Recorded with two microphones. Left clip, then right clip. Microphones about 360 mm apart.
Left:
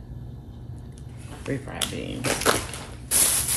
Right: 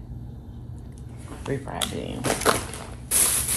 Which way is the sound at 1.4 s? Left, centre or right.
Centre.